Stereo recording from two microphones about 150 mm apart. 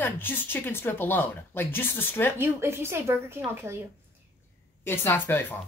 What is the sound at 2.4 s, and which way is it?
A woman's voice, 15° right (ahead or behind).